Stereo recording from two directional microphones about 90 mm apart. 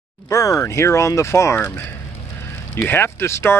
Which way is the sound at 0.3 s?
35° left (ahead or behind).